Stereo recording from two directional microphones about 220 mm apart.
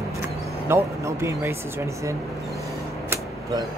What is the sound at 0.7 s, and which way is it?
Speech, 10° right (ahead or behind).